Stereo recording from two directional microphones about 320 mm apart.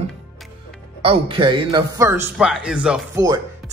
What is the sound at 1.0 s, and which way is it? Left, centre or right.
A man's voice, centre.